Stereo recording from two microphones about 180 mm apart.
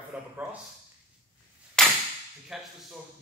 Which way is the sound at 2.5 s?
Centre (ahead or behind).